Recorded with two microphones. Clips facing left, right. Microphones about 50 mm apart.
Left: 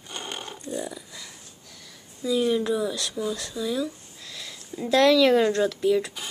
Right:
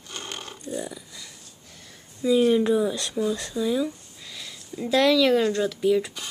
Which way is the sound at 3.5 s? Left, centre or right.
Centre.